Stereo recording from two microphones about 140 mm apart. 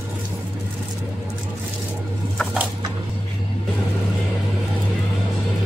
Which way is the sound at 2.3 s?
Centre (ahead or behind).